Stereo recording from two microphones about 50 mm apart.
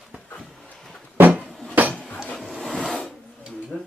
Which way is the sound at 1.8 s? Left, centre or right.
Right.